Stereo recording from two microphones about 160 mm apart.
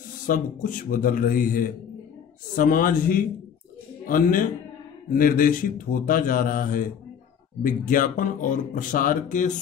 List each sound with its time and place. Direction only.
0.3 s speech: 55° left (ahead or behind)